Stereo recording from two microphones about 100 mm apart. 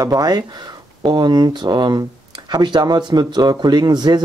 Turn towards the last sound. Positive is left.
turn(degrees=-45)  # may be behind; listen again after turning